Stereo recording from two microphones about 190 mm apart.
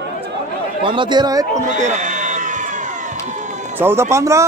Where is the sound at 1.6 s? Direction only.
40° right (ahead or behind).